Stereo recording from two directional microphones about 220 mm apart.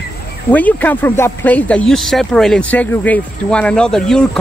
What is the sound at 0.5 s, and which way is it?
Speech, 5° left (ahead or behind).